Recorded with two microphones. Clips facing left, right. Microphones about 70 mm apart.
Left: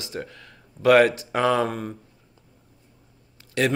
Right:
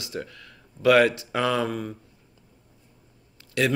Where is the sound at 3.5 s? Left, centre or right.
Left.